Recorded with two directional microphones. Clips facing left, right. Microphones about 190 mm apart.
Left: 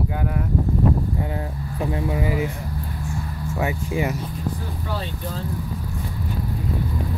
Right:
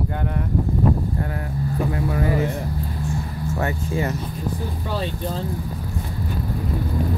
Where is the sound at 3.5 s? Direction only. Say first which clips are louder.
Left 1 dB; 10° left (ahead or behind).